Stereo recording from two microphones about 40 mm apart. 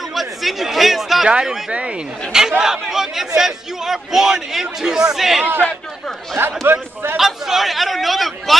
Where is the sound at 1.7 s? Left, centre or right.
Right.